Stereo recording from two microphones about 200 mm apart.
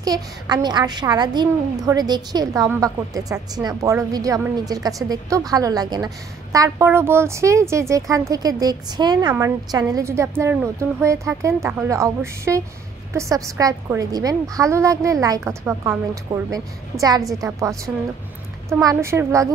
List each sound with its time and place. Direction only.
0.0 s a woman's voice: 20° right (ahead or behind)